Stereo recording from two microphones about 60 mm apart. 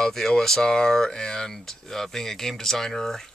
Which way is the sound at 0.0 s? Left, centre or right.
Centre.